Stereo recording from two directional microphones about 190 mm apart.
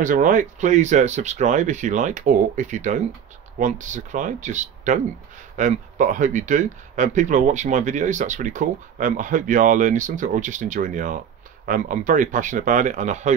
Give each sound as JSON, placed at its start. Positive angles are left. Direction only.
{"t": 0.0, "sound": "speech", "side_deg": -45}